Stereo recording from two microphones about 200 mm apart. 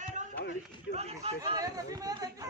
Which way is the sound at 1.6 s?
15° right (ahead or behind).